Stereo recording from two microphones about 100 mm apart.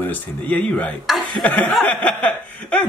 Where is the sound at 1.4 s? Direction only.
15° left (ahead or behind).